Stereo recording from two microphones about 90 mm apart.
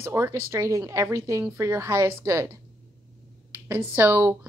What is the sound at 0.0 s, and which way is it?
A woman's voice, 30° right (ahead or behind).